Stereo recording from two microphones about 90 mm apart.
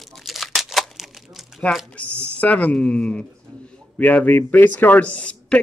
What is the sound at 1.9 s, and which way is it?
Speech, 15° left (ahead or behind).